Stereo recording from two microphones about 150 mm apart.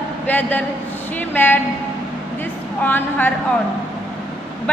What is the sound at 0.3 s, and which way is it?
A woman's voice, 10° left (ahead or behind).